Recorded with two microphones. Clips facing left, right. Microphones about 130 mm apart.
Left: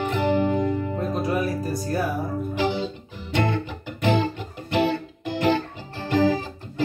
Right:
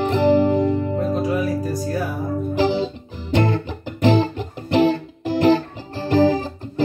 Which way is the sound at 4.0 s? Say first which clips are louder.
Right 5 dB; 35° right (ahead or behind).